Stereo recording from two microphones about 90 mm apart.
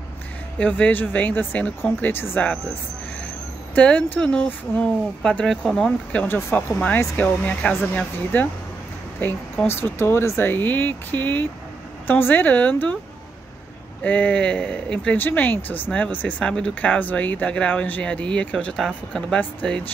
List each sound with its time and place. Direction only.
0.6 s speech: 15° left (ahead or behind)
3.7 s speech: 15° left (ahead or behind)
6.2 s speech: 20° left (ahead or behind)
9.7 s speech: 25° left (ahead or behind)
14.0 s speech: 15° left (ahead or behind)
15.1 s speech: 20° left (ahead or behind)